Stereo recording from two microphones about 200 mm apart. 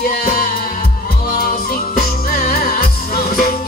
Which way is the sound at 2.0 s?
45° left (ahead or behind).